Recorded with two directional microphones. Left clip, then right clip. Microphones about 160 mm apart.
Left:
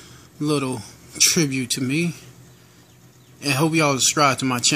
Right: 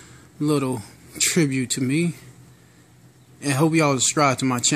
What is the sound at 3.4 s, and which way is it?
Speech, 15° right (ahead or behind).